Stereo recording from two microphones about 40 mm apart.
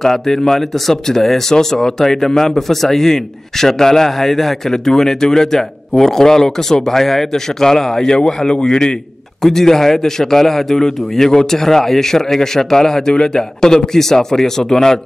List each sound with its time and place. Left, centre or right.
0.0 s a man's voice: centre